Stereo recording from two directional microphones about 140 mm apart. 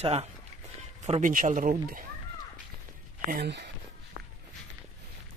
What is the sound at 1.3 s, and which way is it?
Speech, 75° right (ahead or behind).